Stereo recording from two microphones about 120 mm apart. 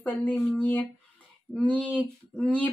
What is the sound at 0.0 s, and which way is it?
Speech, 15° left (ahead or behind).